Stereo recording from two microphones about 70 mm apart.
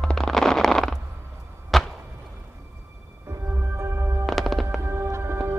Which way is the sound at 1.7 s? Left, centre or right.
Centre.